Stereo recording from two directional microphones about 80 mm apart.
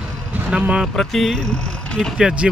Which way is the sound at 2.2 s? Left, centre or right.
Centre.